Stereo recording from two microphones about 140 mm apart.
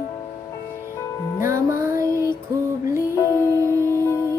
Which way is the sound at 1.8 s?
20° right (ahead or behind).